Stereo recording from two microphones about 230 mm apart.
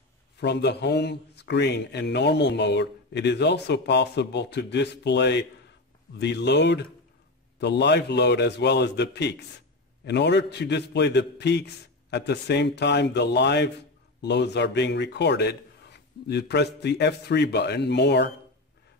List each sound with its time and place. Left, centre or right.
0.4 s speech: left